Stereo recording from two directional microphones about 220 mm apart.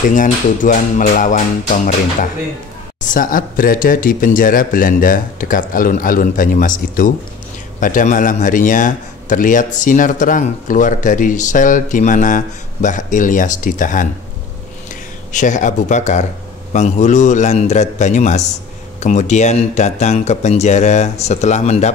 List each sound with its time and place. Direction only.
0.1 s a man's voice: 35° left (ahead or behind)
3.1 s a man's voice: 40° left (ahead or behind)
15.3 s a man's voice: 35° left (ahead or behind)